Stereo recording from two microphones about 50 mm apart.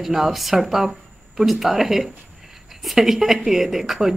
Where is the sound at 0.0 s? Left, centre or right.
Centre.